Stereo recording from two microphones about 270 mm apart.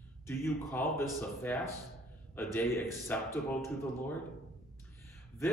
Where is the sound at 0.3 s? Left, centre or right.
Centre.